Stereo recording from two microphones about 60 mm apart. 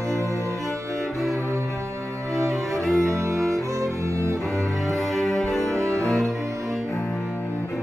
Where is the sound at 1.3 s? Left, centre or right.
Right.